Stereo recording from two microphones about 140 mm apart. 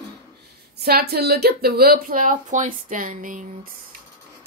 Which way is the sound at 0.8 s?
90° right.